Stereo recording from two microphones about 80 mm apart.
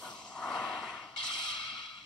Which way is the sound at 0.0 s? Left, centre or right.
Centre.